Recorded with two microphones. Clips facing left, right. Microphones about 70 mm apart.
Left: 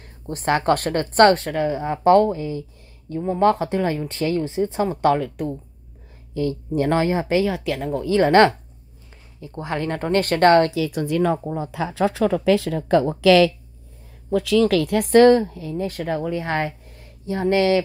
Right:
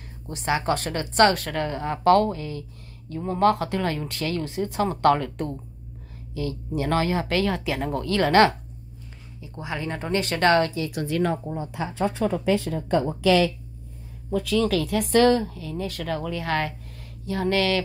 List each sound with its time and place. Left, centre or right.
0.3 s speech: left
1.5 s speech: centre
4.8 s a woman's voice: centre
6.3 s speech: left
7.4 s a woman's voice: centre
8.0 s speech: centre
8.3 s speech: left
9.4 s speech: left
11.9 s a woman's voice: left